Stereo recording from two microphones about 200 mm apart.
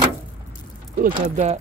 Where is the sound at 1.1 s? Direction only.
30° right (ahead or behind).